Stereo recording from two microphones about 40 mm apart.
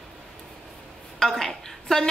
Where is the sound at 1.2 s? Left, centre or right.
Centre.